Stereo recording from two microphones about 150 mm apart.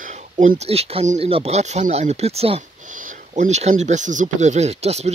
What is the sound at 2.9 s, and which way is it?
Speech, 60° right (ahead or behind).